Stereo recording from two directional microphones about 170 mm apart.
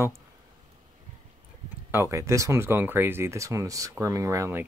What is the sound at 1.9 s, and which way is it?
Speech, 15° right (ahead or behind).